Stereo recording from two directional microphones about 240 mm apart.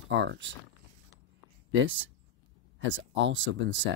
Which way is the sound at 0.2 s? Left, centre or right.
Right.